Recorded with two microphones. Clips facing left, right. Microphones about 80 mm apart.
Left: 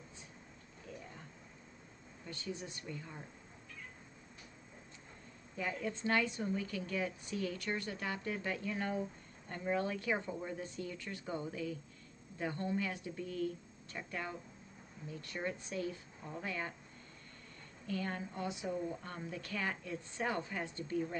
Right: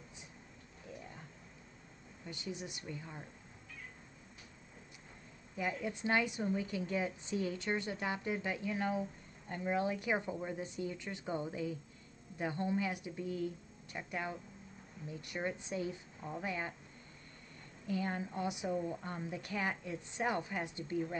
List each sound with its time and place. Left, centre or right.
2.2 s a woman's voice: centre
5.6 s a woman's voice: centre
17.8 s a woman's voice: centre